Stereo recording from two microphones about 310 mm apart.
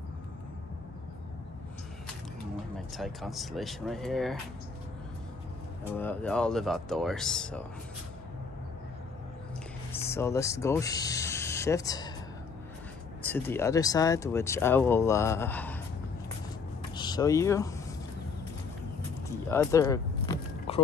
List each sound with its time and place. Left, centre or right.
3.0 s speech: centre
5.9 s speech: centre
10.0 s speech: centre
13.2 s speech: centre
16.9 s vehicle: centre
19.5 s a sound: centre